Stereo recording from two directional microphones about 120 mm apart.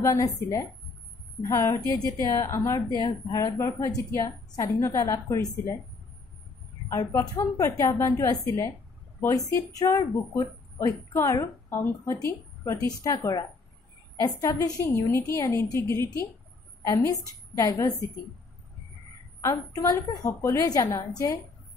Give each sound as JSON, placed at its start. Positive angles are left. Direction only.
{"t": 0.0, "sound": "speech", "side_deg": 25}
{"t": 6.9, "sound": "speech", "side_deg": 25}
{"t": 19.4, "sound": "speech", "side_deg": 25}